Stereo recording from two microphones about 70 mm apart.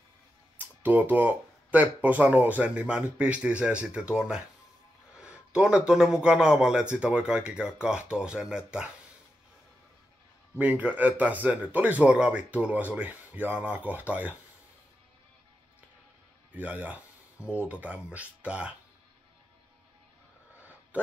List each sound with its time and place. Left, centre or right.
0.6 s speech: right
10.6 s speech: right
16.5 s speech: right
20.9 s speech: right